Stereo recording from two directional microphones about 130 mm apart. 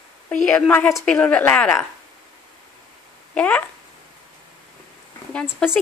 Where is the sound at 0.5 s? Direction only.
15° left (ahead or behind).